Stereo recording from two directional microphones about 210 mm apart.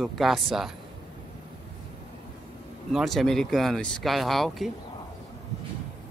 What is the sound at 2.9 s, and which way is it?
Speech, centre (ahead or behind).